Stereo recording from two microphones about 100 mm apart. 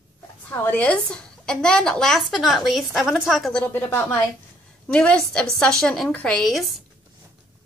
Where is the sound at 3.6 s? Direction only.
20° left (ahead or behind).